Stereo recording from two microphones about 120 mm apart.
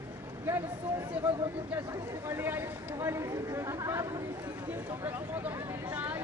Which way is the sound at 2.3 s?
20° right (ahead or behind).